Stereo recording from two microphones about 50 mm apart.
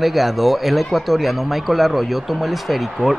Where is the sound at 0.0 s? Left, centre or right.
Centre.